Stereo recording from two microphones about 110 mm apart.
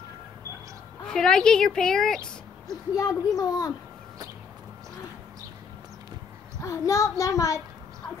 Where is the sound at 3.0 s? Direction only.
35° left (ahead or behind).